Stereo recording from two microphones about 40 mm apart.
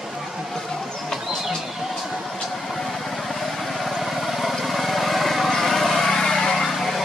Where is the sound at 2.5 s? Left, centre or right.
Centre.